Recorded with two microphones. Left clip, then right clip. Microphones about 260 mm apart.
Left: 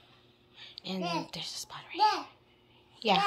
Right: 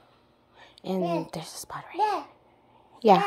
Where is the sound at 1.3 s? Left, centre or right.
Right.